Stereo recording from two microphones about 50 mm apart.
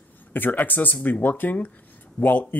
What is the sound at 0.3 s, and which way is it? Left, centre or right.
Speech, left.